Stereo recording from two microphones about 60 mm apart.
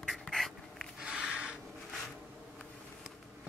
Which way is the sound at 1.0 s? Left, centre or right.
Centre.